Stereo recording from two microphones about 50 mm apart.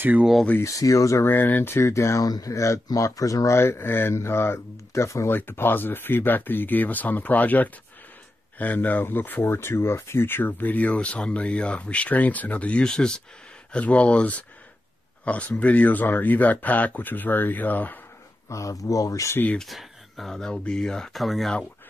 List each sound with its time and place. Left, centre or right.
0.6 s speech: left
1.2 s speech: left
4.1 s speech: left
5.3 s speech: left
12.8 s speech: centre
13.7 s speech: left
18.5 s speech: left
19.6 s speech: centre
21.1 s speech: centre